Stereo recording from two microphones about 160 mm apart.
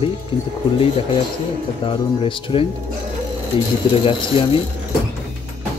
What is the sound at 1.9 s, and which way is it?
Speech, 30° left (ahead or behind).